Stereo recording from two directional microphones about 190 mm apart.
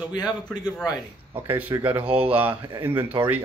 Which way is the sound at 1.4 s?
10° right (ahead or behind).